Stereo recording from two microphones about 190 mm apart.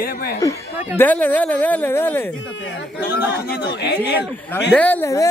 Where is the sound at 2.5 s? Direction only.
75° left (ahead or behind).